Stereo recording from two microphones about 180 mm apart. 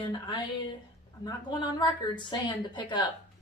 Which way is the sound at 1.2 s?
25° left (ahead or behind).